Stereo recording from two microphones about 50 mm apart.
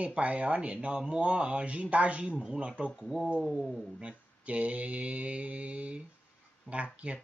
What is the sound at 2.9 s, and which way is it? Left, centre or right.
Speech, centre.